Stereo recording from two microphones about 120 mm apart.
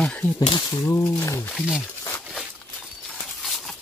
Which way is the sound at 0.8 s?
20° left (ahead or behind).